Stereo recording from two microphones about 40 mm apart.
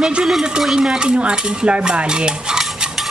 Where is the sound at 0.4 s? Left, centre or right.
Centre.